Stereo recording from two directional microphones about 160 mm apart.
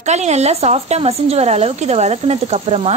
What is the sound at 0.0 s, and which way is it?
Speech, 45° right (ahead or behind).